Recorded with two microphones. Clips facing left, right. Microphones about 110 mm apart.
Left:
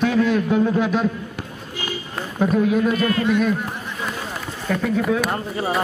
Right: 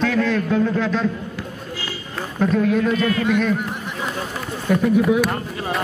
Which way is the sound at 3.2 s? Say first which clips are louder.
Left 1 dB; 15° left (ahead or behind).